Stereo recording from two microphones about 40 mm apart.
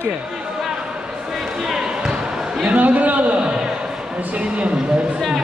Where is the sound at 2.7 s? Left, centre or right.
Right.